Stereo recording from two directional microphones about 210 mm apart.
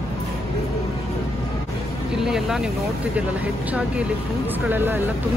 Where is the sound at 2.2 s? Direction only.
Centre (ahead or behind).